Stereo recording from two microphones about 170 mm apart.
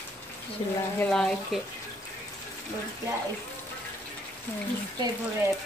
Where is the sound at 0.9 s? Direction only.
5° left (ahead or behind).